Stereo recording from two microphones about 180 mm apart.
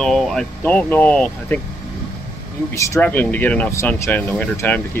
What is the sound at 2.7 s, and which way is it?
Speech, 15° left (ahead or behind).